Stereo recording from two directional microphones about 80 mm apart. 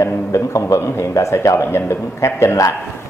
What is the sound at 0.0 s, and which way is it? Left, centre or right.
A man's voice, left.